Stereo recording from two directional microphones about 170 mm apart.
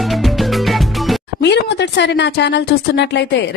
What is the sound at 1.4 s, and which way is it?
A woman's voice, 85° left.